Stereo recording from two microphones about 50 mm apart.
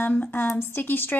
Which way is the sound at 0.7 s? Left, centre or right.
Left.